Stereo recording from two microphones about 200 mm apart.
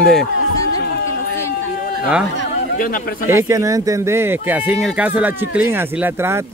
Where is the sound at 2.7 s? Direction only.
45° left (ahead or behind).